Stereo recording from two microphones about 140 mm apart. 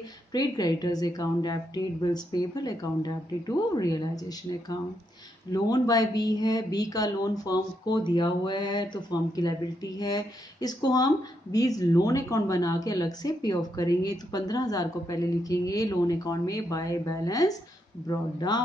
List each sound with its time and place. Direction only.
0.3 s speech: 30° left (ahead or behind)